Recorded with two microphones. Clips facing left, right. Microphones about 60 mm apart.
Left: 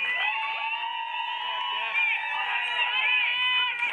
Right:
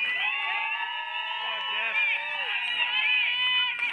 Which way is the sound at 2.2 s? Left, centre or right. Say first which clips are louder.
Left 3 dB; centre.